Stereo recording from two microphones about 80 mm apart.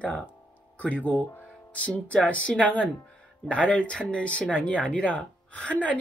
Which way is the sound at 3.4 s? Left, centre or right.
Centre.